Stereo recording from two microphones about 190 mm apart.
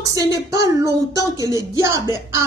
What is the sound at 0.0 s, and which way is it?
Female singing, 20° right (ahead or behind).